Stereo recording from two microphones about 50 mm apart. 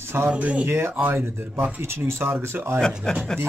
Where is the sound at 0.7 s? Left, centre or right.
Right.